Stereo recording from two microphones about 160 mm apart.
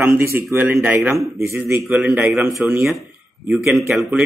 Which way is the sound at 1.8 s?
5° right (ahead or behind).